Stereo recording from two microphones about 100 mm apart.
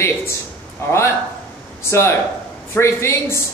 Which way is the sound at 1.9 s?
25° left (ahead or behind).